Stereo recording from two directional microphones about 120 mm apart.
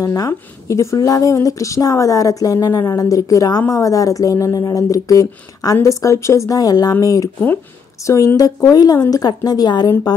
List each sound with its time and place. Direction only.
0.0 s a woman's voice: 30° left (ahead or behind)